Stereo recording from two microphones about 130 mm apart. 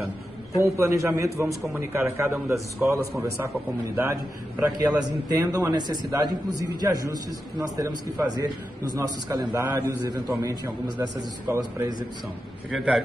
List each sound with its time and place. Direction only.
0.6 s a man's voice: 20° right (ahead or behind)
5.0 s a man's voice: 30° right (ahead or behind)
12.7 s a man's voice: centre (ahead or behind)